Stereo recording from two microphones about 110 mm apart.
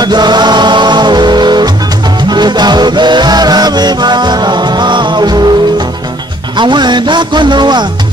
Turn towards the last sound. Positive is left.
turn(degrees=-45)  # may be behind; listen again after turning